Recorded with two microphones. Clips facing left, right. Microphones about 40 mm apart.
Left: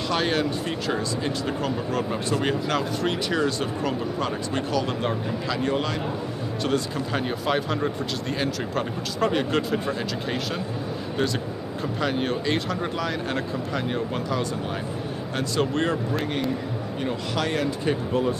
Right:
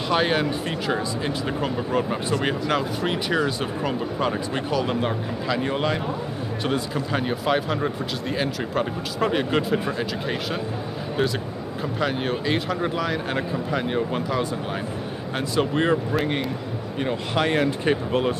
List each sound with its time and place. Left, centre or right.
0.1 s speech: centre; by 18.3 s right